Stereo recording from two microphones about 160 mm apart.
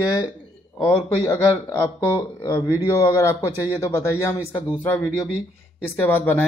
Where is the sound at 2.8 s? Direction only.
15° left (ahead or behind).